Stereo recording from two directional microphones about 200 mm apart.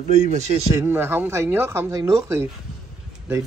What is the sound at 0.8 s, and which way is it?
Speech, 10° right (ahead or behind).